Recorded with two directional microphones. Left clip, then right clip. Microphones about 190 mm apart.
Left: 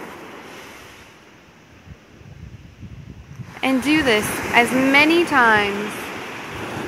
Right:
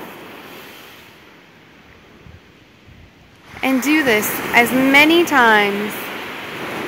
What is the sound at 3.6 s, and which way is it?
Speech, 5° right (ahead or behind).